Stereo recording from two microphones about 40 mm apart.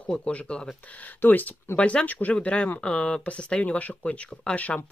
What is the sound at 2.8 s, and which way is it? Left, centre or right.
Speech, left.